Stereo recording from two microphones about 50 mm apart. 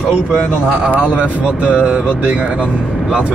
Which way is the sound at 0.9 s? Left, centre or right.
Right.